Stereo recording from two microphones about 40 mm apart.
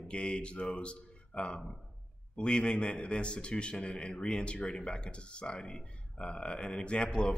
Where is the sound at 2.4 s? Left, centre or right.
Left.